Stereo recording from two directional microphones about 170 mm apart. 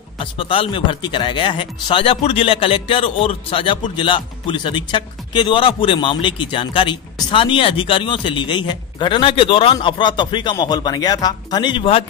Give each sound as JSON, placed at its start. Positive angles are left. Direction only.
{"t": 0.2, "sound": "speech", "side_deg": 30}